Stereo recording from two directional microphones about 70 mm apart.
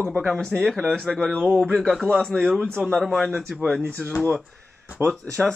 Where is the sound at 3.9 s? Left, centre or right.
Centre.